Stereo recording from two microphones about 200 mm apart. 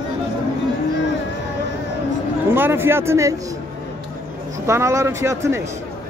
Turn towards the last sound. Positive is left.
turn(degrees=-15)  # may be behind; listen again after turning